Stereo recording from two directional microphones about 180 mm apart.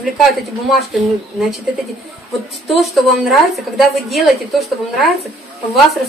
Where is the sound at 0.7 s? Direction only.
Centre (ahead or behind).